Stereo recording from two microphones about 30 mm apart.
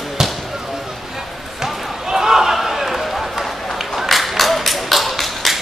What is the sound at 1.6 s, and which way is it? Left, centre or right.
Basketball bounce, centre.